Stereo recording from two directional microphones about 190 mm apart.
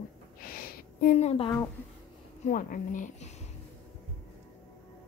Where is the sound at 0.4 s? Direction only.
50° left (ahead or behind).